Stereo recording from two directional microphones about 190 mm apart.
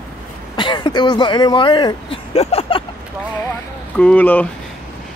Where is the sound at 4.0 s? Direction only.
5° left (ahead or behind).